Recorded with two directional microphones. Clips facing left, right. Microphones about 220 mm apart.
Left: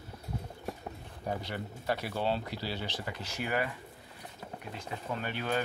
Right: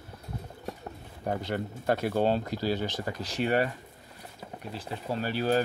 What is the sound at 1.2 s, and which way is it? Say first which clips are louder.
Speech: right 5 dB; 50° right (ahead or behind).